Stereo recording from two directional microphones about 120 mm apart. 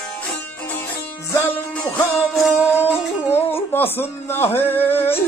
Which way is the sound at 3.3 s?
20° left (ahead or behind).